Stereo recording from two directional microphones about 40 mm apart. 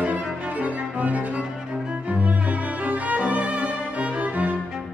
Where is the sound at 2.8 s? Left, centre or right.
Right.